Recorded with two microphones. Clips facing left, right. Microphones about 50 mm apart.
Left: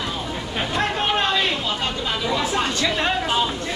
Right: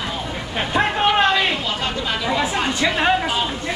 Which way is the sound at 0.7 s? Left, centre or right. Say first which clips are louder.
Right 5 dB; centre.